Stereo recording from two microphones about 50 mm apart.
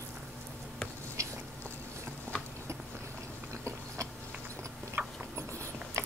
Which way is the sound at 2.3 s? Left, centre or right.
Right.